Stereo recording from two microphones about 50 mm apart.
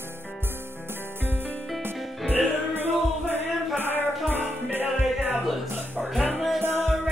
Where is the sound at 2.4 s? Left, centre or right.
Right.